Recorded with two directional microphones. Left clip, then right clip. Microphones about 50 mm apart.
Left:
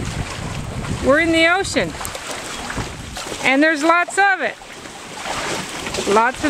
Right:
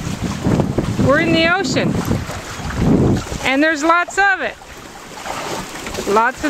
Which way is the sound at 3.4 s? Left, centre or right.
Centre.